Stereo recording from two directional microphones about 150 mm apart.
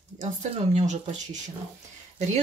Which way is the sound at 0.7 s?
50° right (ahead or behind).